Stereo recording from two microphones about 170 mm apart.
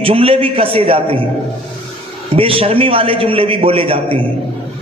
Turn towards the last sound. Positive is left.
turn(degrees=-35)  # may be behind; listen again after turning